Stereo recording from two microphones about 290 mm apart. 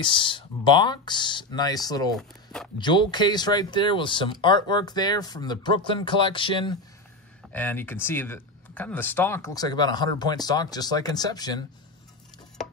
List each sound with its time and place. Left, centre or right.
0.0 s speech: centre
2.1 s a sound: centre
2.8 s speech: centre